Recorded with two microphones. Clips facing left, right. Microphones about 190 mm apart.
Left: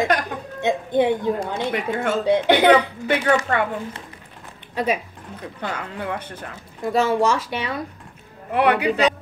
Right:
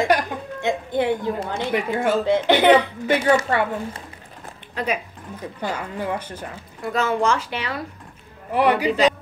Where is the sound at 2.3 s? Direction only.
15° left (ahead or behind).